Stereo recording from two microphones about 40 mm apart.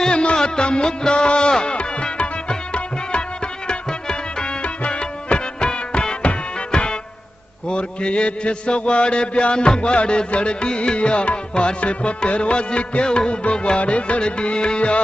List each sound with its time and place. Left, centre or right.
0.0 s music: left
7.6 s mantra: left